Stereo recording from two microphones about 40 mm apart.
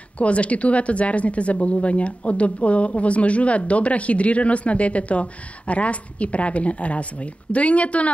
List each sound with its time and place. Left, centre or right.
0.2 s speech: left